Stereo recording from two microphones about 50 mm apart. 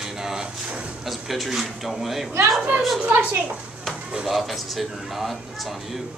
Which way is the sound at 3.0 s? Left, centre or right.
Right.